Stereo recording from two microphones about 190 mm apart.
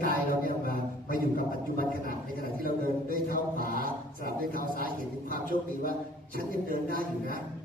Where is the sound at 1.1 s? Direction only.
45° right (ahead or behind).